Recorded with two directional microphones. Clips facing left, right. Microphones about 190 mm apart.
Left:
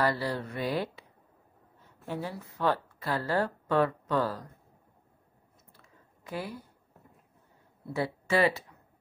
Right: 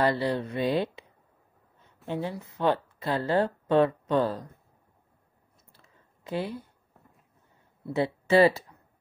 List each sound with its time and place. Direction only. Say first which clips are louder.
0.0 s speech: right 4 dB; 20° right (ahead or behind)
2.0 s speech: right 4 dB; 20° right (ahead or behind)
6.2 s a woman's voice: right 5 dB; 25° right (ahead or behind)
7.9 s speech: right 6 dB; 25° right (ahead or behind)